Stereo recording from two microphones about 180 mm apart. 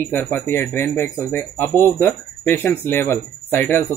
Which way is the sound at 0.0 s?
10° left (ahead or behind).